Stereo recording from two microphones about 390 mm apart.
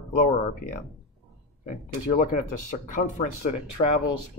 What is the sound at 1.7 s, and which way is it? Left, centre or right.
Speech, left.